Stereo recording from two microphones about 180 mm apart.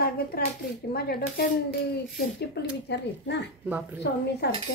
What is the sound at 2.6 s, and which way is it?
A woman's voice, 65° left (ahead or behind).